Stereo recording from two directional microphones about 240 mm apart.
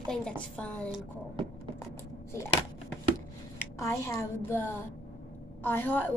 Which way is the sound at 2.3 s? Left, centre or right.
Centre.